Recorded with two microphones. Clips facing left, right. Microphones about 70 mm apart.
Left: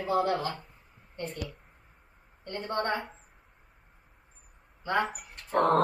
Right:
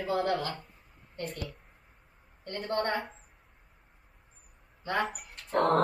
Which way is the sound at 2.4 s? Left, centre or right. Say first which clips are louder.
Even; left.